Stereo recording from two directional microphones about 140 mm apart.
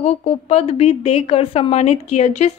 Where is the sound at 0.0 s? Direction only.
50° left (ahead or behind).